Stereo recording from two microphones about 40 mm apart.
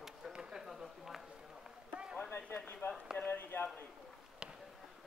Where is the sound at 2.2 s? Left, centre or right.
Left.